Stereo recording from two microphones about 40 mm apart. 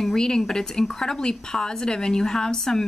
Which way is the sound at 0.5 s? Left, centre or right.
Centre.